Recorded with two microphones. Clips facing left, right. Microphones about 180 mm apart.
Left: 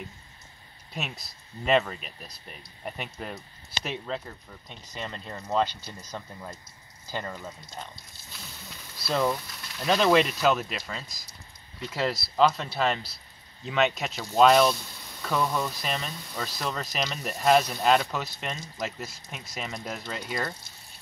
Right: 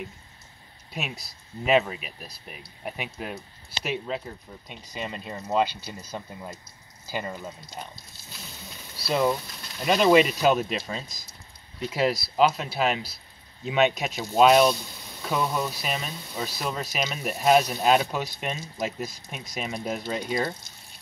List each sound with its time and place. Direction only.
1.6 s speech: 10° right (ahead or behind)
9.1 s speech: 15° right (ahead or behind)